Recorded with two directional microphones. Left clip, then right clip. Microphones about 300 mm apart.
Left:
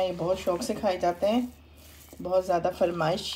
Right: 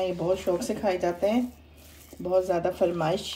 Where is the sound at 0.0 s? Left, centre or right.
Left.